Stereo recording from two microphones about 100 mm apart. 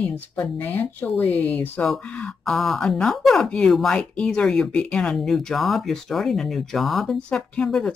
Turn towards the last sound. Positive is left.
turn(degrees=5)  # may be behind; listen again after turning